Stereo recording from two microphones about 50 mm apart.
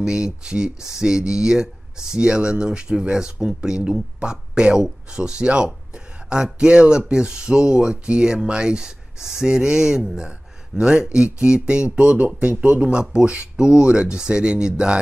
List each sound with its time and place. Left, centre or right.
0.0 s speech: centre